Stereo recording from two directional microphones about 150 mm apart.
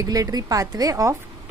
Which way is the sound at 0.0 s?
25° right (ahead or behind).